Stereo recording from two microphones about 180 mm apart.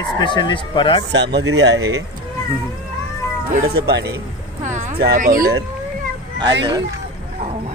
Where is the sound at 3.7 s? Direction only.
65° right (ahead or behind).